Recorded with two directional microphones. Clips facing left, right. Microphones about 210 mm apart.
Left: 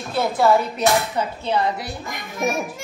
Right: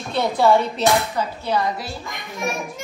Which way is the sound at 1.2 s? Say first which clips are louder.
Left 1 dB; 25° left (ahead or behind).